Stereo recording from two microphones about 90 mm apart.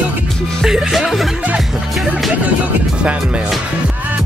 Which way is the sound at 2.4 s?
15° right (ahead or behind).